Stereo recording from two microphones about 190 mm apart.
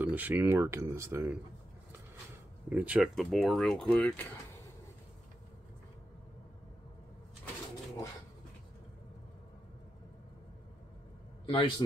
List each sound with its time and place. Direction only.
0.0 s speech: 10° right (ahead or behind)
2.7 s speech: 5° right (ahead or behind)
11.4 s a man's voice: 30° left (ahead or behind)